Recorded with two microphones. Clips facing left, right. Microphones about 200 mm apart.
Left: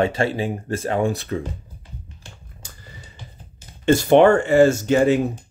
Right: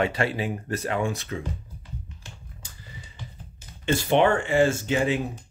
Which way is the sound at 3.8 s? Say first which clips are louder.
Left 8 dB; 45° left (ahead or behind).